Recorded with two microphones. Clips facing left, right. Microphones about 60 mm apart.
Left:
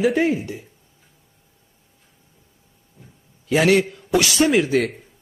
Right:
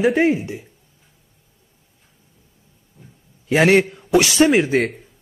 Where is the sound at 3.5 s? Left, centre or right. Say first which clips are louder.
Right 2 dB; right.